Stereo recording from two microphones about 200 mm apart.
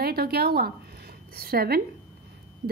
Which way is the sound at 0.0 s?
50° right (ahead or behind).